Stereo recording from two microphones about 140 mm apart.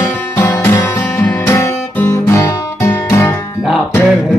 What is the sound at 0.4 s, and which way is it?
Music, 10° left (ahead or behind).